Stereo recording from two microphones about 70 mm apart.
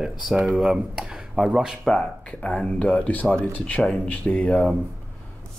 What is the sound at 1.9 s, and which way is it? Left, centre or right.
Speech, centre.